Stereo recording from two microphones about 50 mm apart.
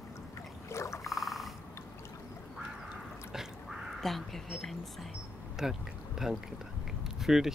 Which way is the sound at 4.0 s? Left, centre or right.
Centre.